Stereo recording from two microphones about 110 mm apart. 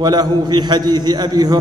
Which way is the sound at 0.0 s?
40° right (ahead or behind).